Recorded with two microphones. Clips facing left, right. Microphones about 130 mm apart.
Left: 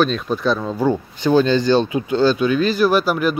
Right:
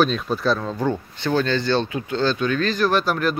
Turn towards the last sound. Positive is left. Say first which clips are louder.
# left 3 dB
turn(degrees=5)  # may be behind; listen again after turning